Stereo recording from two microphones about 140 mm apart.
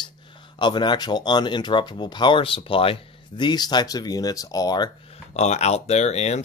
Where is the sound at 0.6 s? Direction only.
35° left (ahead or behind).